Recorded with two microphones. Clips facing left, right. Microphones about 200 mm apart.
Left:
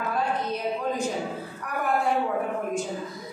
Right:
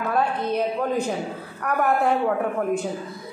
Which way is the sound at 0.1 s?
60° right (ahead or behind).